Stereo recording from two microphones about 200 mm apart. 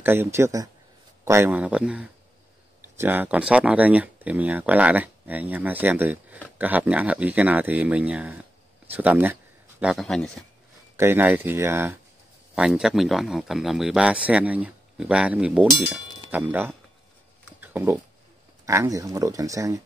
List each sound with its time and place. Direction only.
0.0 s speech: 10° right (ahead or behind)
11.0 s speech: 10° right (ahead or behind)
17.6 s a sound: 10° right (ahead or behind)
18.7 s speech: 15° right (ahead or behind)